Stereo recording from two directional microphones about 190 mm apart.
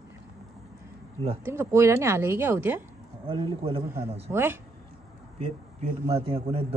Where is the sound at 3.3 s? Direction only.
25° right (ahead or behind).